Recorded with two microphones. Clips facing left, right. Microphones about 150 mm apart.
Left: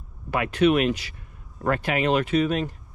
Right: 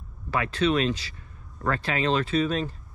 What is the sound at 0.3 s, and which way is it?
Speech, 15° left (ahead or behind).